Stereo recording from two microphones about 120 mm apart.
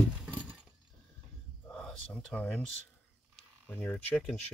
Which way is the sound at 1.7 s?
5° left (ahead or behind).